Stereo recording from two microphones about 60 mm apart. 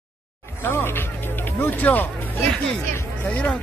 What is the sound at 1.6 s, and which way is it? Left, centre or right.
Speech, left.